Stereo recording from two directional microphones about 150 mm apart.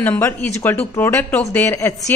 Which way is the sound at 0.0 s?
10° left (ahead or behind).